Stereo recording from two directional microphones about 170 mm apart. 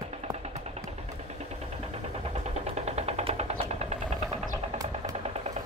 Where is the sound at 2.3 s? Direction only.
40° right (ahead or behind).